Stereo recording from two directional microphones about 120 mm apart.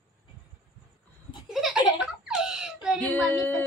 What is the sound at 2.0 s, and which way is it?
Giggle, 5° right (ahead or behind).